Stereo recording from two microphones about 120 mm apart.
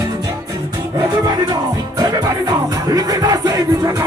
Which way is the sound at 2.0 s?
35° right (ahead or behind).